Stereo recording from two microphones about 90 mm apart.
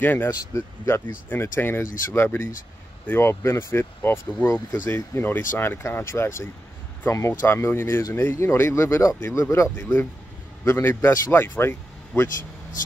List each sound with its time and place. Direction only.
0.0 s speech: 20° left (ahead or behind)
0.3 s speech: 30° left (ahead or behind)